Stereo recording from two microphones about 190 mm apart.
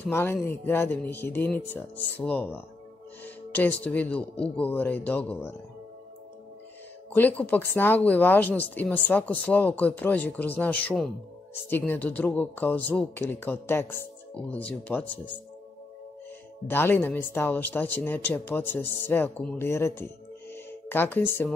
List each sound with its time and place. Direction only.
0.1 s speech: 10° left (ahead or behind)
7.1 s speech: 10° left (ahead or behind)
16.6 s speech: 10° left (ahead or behind)